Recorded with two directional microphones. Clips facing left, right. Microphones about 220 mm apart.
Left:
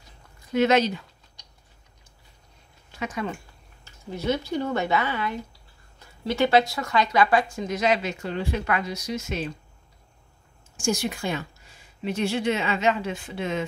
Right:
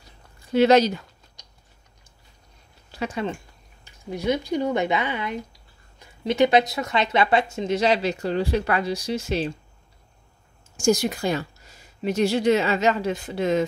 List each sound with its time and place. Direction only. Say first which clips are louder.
0.5 s a sound: right 4 dB; 35° right (ahead or behind)
2.9 s speech: right 3 dB; 30° right (ahead or behind)
3.8 s speech: right 2 dB; 15° right (ahead or behind); by 9.5 s 30° right (ahead or behind)
10.8 s a woman's voice: right 5 dB; 40° right (ahead or behind)